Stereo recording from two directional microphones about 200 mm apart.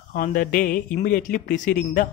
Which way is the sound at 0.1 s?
45° left (ahead or behind).